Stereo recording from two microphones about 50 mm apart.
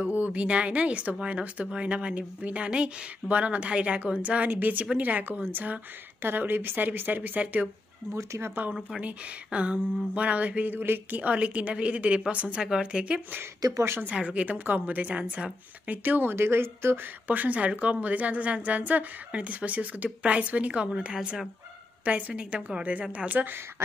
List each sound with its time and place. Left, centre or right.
0.0 s a woman's voice: right
8.1 s speech: right
9.0 s a woman's voice: right
10.7 s a woman's voice: right
12.6 s a woman's voice: centre
13.7 s speech: right
14.0 s a woman's voice: right
16.3 s speech: right
17.3 s a woman's voice: right